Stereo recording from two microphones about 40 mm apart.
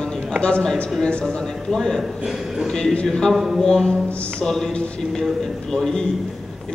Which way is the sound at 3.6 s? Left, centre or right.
Centre.